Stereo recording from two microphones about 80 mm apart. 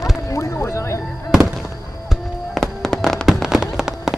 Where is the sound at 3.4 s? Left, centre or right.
Centre.